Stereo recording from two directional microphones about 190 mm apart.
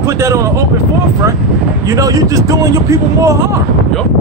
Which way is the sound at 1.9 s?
20° right (ahead or behind).